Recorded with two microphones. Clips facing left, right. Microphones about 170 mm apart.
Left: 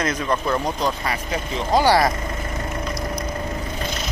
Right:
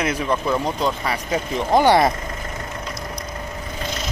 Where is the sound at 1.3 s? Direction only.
20° right (ahead or behind).